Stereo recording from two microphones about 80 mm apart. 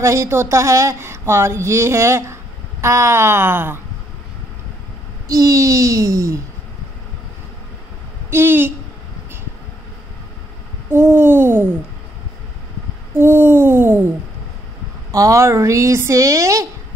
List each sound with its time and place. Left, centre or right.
0.0 s a woman's voice: right
5.3 s a child's voice: right
8.3 s a woman's voice: right
10.9 s a sound: right
13.1 s a sound: right
15.0 s a woman's voice: right